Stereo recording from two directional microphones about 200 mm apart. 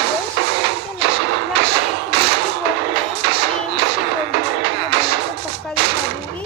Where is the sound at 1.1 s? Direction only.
60° right (ahead or behind).